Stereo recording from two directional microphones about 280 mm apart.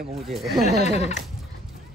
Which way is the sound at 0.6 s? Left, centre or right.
Left.